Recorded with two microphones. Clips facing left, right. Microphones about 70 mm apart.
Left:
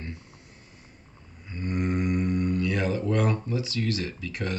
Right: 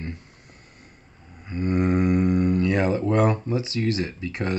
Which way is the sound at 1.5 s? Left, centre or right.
Right.